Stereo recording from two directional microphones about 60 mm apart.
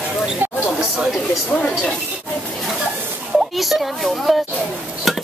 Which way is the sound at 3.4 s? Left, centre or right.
Centre.